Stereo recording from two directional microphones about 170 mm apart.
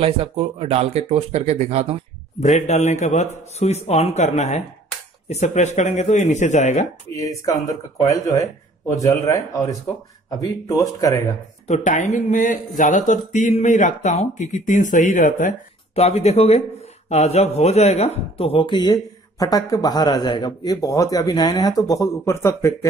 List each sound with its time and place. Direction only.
0.0 s speech: 35° right (ahead or behind)
2.4 s speech: 45° left (ahead or behind)
7.2 s a man's voice: 20° left (ahead or behind)
11.6 s a man's voice: 45° left (ahead or behind); by 22.8 s 20° left (ahead or behind)